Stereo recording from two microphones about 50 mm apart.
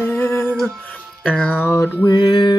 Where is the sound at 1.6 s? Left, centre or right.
Left.